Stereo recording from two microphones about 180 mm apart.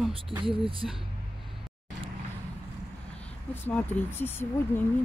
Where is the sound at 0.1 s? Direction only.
30° right (ahead or behind).